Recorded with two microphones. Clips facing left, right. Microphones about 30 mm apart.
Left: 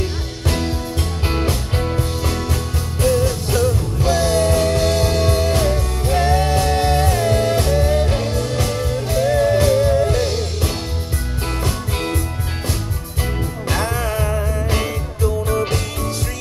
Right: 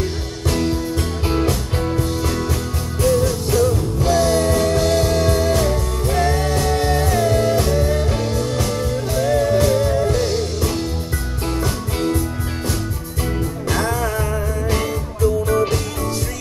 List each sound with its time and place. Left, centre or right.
0.0 s music: centre
13.2 s music: centre
13.8 s music: left
14.1 s music: centre